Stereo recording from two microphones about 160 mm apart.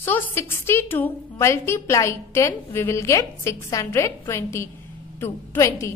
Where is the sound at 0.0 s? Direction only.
15° left (ahead or behind).